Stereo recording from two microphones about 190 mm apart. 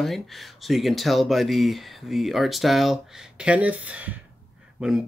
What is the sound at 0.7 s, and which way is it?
Speech, centre (ahead or behind).